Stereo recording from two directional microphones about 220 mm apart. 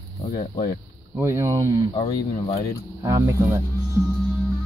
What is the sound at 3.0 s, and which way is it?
Speech, 15° right (ahead or behind).